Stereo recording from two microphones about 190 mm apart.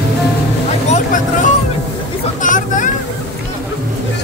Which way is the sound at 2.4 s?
40° left (ahead or behind).